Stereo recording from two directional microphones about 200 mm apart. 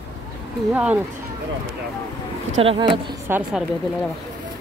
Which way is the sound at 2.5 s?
30° right (ahead or behind).